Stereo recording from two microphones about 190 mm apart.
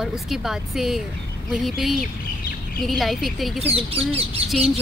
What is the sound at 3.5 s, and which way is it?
Speech, 30° right (ahead or behind).